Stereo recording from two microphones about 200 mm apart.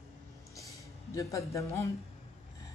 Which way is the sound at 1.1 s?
15° left (ahead or behind).